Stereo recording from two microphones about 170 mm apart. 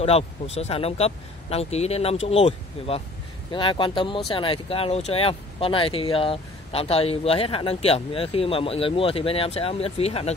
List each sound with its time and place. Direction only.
0.0 s speech: 35° left (ahead or behind)